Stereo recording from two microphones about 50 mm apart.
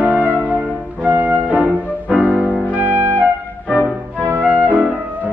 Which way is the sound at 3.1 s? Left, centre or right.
Left.